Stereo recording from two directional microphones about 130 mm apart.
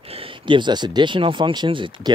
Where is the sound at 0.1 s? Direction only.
45° right (ahead or behind).